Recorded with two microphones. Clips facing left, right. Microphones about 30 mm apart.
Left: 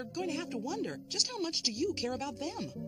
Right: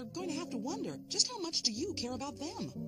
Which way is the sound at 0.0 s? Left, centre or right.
Left.